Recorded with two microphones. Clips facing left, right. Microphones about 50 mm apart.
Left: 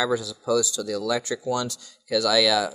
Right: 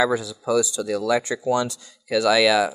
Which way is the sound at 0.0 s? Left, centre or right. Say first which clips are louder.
Right 3 dB; right.